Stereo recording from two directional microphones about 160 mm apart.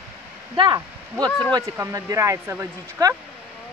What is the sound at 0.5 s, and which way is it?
Speech, 25° right (ahead or behind).